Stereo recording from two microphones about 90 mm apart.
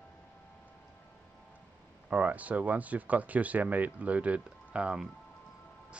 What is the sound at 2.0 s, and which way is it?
Speech, 15° right (ahead or behind).